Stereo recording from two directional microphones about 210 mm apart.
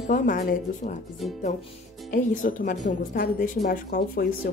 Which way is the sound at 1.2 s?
Centre (ahead or behind).